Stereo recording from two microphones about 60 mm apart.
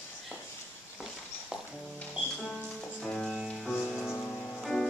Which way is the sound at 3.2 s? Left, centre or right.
Centre.